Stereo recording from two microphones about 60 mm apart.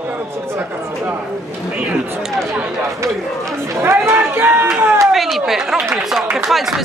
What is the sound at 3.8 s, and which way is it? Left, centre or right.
Chatter, right.